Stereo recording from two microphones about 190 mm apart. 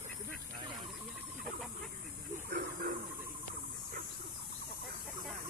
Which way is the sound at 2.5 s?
50° right (ahead or behind).